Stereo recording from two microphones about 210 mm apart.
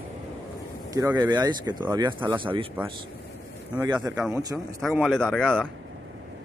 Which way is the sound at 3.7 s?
5° right (ahead or behind).